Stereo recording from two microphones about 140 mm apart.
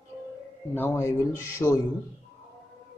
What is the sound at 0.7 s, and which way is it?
A man's voice, 20° left (ahead or behind).